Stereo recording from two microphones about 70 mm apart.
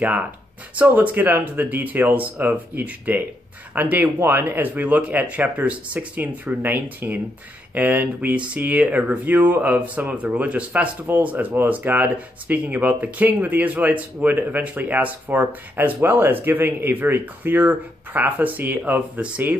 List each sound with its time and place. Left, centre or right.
0.7 s speech: right